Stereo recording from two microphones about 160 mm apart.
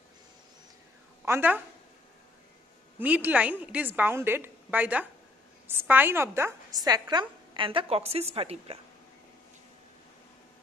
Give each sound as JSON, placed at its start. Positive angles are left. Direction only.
{"t": 1.2, "sound": "a woman's voice", "side_deg": -15}
{"t": 3.0, "sound": "a woman's voice", "side_deg": -10}